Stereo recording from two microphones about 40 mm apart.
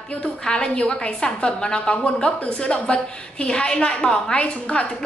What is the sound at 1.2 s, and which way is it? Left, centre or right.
A woman's voice, centre.